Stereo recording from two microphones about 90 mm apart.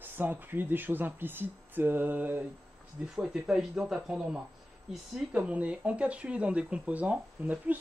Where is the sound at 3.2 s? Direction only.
5° right (ahead or behind).